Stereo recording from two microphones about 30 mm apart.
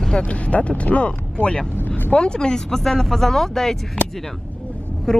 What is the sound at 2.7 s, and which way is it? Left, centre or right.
Speech, centre.